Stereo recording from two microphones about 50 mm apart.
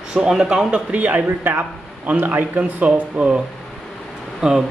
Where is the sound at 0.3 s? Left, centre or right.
Centre.